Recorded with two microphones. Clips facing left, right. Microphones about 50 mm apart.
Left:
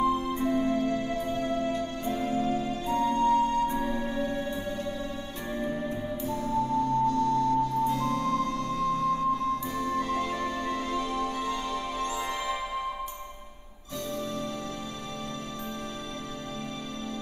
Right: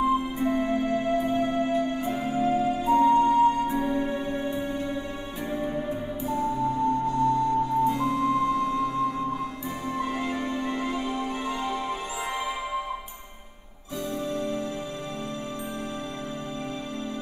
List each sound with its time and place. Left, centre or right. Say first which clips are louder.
0.0 s music: right 2 dB; centre